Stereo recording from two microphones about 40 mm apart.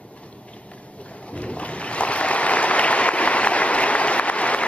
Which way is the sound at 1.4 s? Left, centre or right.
Left.